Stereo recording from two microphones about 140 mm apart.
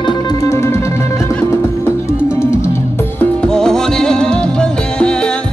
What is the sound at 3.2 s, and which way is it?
Music, 5° left (ahead or behind).